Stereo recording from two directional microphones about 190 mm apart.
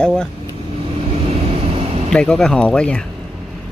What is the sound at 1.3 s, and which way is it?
Vehicle, 30° right (ahead or behind).